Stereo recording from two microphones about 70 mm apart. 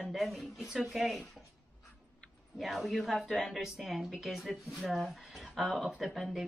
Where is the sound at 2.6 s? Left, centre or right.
Centre.